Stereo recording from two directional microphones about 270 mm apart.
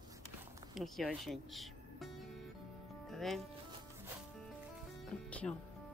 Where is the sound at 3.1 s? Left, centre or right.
Centre.